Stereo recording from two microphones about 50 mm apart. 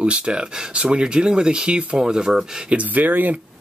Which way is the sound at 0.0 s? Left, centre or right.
Centre.